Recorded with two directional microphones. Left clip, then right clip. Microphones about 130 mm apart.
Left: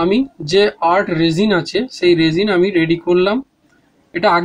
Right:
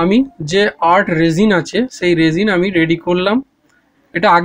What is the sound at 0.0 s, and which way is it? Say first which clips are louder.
Speech: right 2 dB; 15° right (ahead or behind).